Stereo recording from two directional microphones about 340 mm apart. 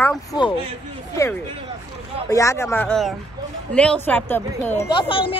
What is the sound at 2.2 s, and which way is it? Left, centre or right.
Speech, centre.